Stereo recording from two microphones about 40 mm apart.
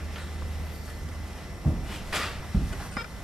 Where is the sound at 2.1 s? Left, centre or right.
Centre.